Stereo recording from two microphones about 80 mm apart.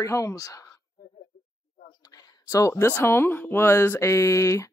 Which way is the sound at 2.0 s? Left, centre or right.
Left.